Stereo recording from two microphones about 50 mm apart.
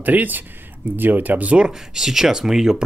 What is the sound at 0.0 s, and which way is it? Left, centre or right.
Speech, right.